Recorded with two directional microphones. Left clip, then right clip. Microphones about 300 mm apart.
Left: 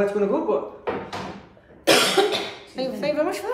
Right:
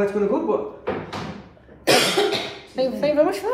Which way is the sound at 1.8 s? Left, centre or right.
Centre.